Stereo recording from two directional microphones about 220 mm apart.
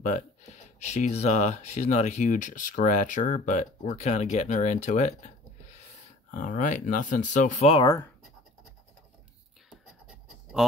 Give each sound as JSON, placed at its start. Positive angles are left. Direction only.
{"t": 0.0, "sound": "speech", "side_deg": 30}
{"t": 7.8, "sound": "speech", "side_deg": 15}